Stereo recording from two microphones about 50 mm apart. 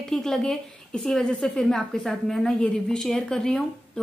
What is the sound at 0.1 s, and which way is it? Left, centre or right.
Speech, centre.